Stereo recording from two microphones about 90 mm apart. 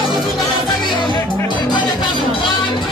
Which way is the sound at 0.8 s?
60° left (ahead or behind).